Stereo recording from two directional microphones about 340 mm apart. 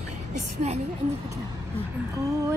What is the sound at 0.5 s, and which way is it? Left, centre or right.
Speech, centre.